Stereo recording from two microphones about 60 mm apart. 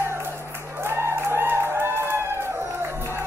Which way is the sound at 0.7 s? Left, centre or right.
Right.